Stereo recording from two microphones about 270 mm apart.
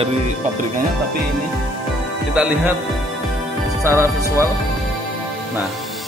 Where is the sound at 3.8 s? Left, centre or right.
Centre.